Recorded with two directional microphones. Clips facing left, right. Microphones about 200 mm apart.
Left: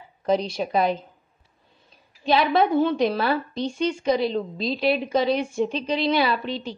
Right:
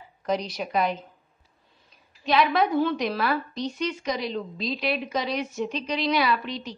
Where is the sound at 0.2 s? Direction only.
30° left (ahead or behind).